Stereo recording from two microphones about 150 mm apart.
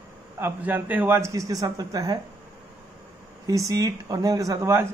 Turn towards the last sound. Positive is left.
turn(degrees=-15)  # may be behind; listen again after turning